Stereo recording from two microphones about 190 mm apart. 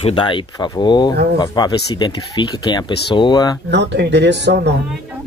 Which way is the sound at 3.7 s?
65° right (ahead or behind).